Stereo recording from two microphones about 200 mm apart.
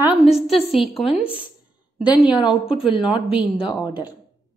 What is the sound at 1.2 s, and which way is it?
Speech, 30° left (ahead or behind).